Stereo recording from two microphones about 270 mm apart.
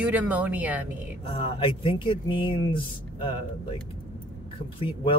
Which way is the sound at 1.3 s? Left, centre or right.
Centre.